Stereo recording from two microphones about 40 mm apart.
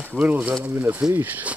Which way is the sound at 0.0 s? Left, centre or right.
Right.